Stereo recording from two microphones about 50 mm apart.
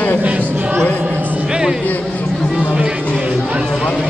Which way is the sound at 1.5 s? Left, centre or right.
Centre.